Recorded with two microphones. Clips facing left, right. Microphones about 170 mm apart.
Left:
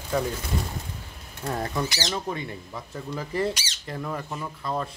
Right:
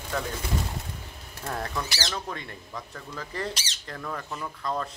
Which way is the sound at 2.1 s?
10° left (ahead or behind).